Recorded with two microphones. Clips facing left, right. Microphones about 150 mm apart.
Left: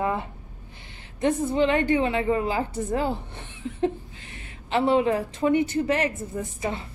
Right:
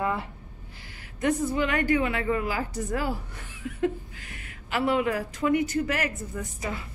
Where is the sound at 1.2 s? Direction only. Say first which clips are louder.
Left 3 dB; 25° left (ahead or behind).